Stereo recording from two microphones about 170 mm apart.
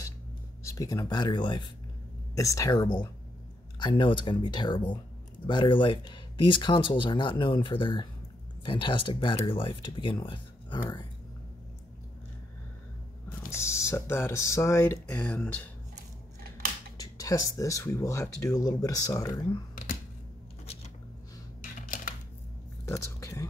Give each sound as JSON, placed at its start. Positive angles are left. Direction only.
{"t": 0.7, "sound": "speech", "side_deg": 20}
{"t": 13.6, "sound": "speech", "side_deg": 15}
{"t": 16.9, "sound": "speech", "side_deg": 20}
{"t": 21.8, "sound": "a sound", "side_deg": 50}
{"t": 22.8, "sound": "whispering", "side_deg": 15}